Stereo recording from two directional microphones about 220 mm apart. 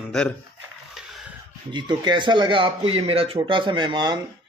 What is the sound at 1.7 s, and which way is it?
A man's voice, 20° right (ahead or behind).